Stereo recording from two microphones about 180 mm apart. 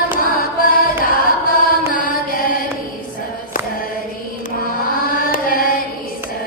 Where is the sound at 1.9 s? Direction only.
50° left (ahead or behind).